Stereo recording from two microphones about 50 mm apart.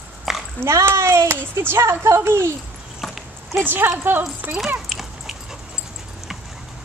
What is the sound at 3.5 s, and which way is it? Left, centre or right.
A woman's voice, right.